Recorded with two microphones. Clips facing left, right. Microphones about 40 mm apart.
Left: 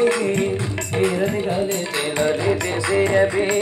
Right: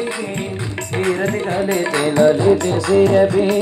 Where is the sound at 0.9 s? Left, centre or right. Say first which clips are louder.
Right 1 dB; right.